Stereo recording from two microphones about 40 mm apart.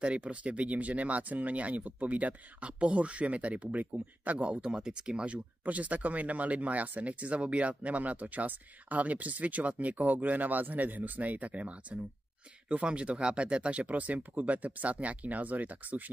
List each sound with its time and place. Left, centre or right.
0.0 s speech: right
4.6 s speech: centre; by 16.1 s right